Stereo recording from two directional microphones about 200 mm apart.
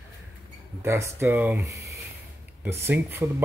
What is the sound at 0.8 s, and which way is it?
Speech, 15° right (ahead or behind).